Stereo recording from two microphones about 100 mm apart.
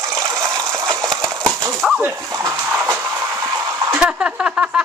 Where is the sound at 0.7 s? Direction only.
30° right (ahead or behind).